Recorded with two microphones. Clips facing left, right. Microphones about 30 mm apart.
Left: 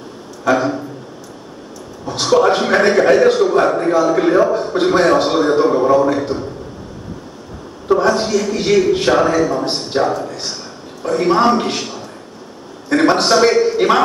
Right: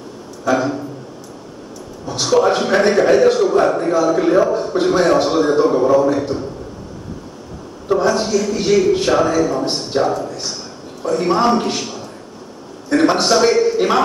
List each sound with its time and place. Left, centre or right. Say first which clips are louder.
0.5 s a man's voice: left 2 dB; left
2.0 s a man's voice: left 2 dB; left
6.0 s a man's voice: even; left
7.9 s a man's voice: left 2 dB; left